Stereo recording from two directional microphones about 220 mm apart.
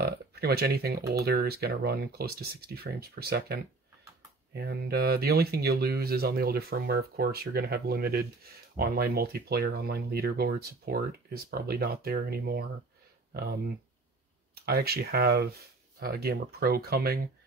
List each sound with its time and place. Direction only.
0.0 s speech: 45° right (ahead or behind)